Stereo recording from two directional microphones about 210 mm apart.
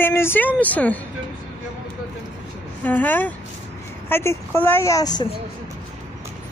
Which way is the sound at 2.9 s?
10° left (ahead or behind).